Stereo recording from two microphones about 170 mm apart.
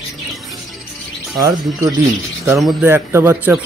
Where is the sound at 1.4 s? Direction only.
20° right (ahead or behind).